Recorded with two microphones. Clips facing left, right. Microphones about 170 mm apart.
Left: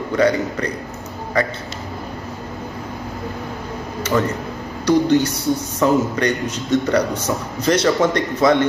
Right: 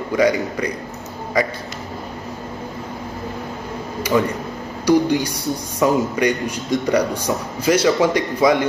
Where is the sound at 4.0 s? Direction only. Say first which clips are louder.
Right 1 dB; 10° right (ahead or behind).